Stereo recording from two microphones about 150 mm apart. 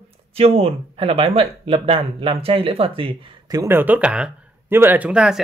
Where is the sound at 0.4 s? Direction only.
45° right (ahead or behind); by 3.7 s 25° right (ahead or behind).